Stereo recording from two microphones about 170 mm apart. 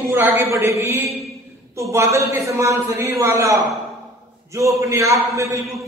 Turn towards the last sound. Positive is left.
turn(degrees=-20)  # may be behind; listen again after turning